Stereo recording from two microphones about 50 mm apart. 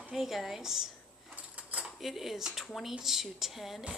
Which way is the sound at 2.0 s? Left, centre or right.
Centre.